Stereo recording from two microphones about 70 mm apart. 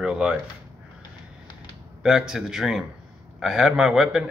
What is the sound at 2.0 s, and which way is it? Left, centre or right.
Speech, centre.